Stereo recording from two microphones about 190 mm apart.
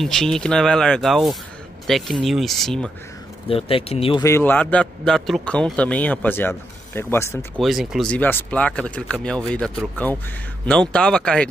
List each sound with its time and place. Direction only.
0.0 s speech: centre (ahead or behind)
3.4 s speech: 30° left (ahead or behind)
4.2 s a man's voice: 10° left (ahead or behind)
7.6 s speech: centre (ahead or behind)